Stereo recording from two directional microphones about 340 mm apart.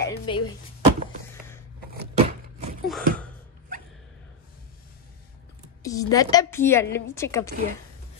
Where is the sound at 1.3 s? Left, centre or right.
Centre.